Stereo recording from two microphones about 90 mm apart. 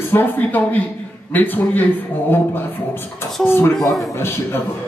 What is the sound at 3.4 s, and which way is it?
Speech, 25° left (ahead or behind).